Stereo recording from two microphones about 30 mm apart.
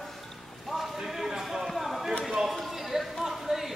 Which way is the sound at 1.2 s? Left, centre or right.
Centre.